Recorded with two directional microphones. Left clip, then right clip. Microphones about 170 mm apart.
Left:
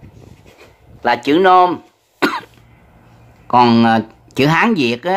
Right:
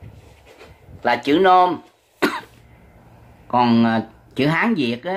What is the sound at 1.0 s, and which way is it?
Cough, 30° left (ahead or behind).